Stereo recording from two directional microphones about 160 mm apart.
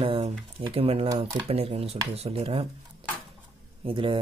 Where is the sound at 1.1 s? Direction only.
30° right (ahead or behind).